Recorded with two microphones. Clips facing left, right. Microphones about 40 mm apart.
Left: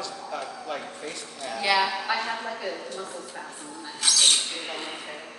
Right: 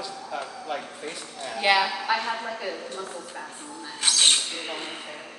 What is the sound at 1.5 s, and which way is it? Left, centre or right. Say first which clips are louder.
Speech: right 2 dB; right.